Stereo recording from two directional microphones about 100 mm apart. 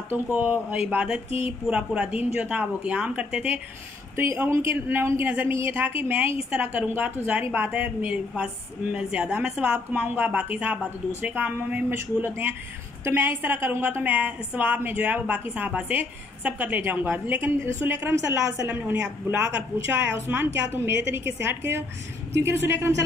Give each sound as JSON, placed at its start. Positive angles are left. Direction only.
{"t": 0.1, "sound": "speech", "side_deg": -15}
{"t": 4.2, "sound": "a woman's voice", "side_deg": -25}
{"t": 19.9, "sound": "a woman's voice", "side_deg": -25}